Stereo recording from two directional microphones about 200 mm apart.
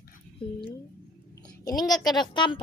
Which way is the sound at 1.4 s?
20° left (ahead or behind).